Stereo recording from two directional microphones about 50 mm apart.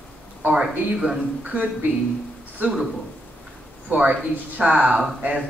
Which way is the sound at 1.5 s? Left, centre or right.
Right.